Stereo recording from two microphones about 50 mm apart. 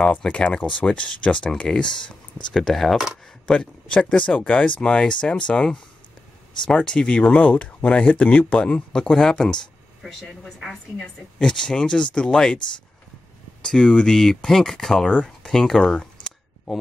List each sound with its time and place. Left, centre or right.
0.2 s speech: left; by 3.1 s centre
3.4 s speech: left
8.9 s speech: centre
10.6 s a woman's voice: centre
11.4 s speech: centre
13.6 s speech: centre
14.1 s speech: centre